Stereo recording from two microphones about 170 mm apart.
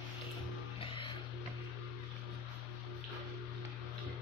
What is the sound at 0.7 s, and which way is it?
Music, 30° left (ahead or behind).